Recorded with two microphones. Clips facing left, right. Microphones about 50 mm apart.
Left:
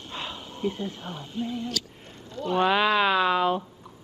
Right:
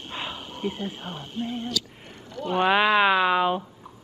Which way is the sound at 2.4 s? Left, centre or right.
Centre.